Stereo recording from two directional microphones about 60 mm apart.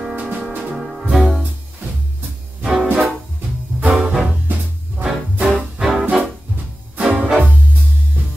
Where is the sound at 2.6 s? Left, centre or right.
Centre.